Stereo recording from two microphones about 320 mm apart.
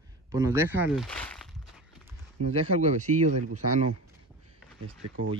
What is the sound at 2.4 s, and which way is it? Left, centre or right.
Speech, centre.